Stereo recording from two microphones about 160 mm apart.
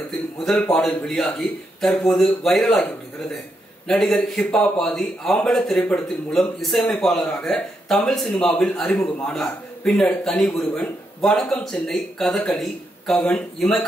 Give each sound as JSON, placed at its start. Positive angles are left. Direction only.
{"t": 0.4, "sound": "a man's voice", "side_deg": 0}